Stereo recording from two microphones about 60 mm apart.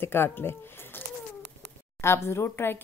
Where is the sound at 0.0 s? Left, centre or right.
Left.